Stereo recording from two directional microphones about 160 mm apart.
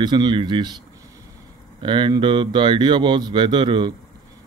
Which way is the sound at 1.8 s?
30° right (ahead or behind).